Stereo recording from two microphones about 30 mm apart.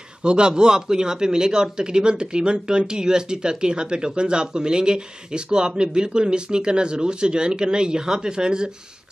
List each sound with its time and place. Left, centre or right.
0.2 s a man's voice: right